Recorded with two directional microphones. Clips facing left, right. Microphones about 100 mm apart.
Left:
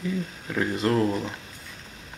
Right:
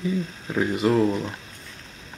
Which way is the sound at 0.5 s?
10° right (ahead or behind).